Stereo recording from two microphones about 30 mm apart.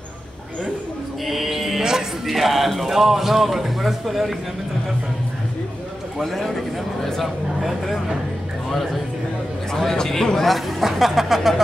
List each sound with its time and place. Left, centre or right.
1.2 s music: centre
1.8 s music: right
2.2 s a man's voice: centre
6.1 s a man's voice: centre
10.8 s speech: centre